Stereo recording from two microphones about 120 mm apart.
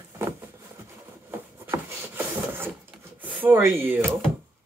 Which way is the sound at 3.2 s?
15° right (ahead or behind).